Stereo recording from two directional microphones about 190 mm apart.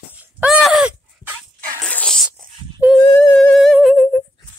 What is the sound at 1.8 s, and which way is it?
Zipper, 5° left (ahead or behind).